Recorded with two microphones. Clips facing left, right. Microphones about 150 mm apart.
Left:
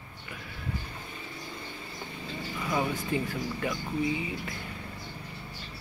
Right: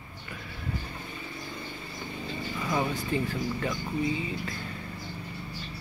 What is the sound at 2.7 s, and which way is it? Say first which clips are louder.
Speech: even; 10° left (ahead or behind).